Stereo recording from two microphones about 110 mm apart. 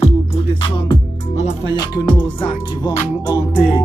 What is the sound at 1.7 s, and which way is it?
Music, 40° left (ahead or behind).